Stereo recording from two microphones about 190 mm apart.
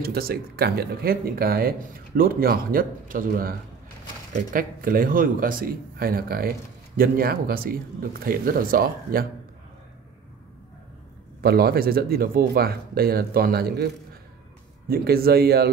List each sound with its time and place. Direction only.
0.0 s speech: 55° right (ahead or behind)
11.4 s speech: 55° right (ahead or behind)
14.9 s speech: 55° right (ahead or behind)